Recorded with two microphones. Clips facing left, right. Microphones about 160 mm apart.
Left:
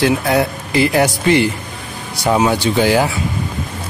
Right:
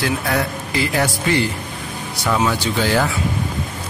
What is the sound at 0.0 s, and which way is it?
Speech, 20° left (ahead or behind).